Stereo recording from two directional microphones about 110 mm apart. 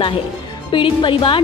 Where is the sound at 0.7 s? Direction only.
50° left (ahead or behind).